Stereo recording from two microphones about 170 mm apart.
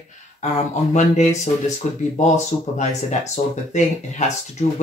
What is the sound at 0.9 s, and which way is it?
Speech, 45° left (ahead or behind).